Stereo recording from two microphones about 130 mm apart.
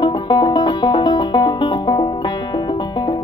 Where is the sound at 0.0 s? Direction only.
35° left (ahead or behind).